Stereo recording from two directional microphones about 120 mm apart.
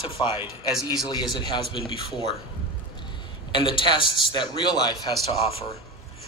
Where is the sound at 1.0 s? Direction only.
35° left (ahead or behind).